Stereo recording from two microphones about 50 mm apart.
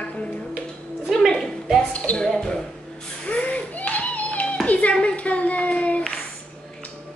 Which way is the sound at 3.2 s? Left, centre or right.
Left.